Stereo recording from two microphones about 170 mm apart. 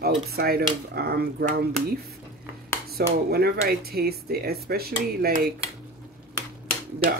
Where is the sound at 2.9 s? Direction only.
65° right (ahead or behind).